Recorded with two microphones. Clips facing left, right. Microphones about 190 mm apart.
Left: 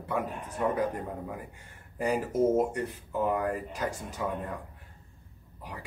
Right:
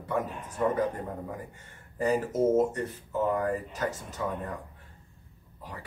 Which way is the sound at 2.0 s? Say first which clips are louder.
Right 1 dB; 10° left (ahead or behind).